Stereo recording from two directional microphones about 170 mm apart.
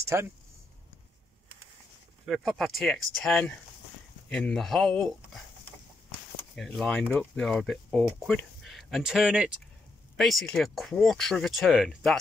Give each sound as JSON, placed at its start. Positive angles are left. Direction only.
{"t": 0.1, "sound": "speech", "side_deg": -15}
{"t": 2.2, "sound": "speech", "side_deg": 0}
{"t": 6.5, "sound": "speech", "side_deg": 5}